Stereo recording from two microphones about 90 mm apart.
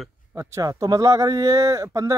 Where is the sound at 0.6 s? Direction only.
45° right (ahead or behind).